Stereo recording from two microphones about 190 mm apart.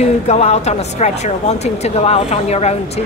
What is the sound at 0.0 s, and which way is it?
A woman's voice, 35° left (ahead or behind).